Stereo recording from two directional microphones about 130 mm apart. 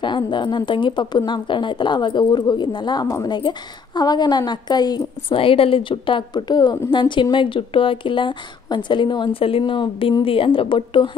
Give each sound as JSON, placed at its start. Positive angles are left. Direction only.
{"t": 0.0, "sound": "a woman's voice", "side_deg": 35}